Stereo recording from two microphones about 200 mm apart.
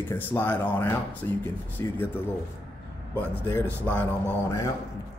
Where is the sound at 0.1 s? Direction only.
10° left (ahead or behind).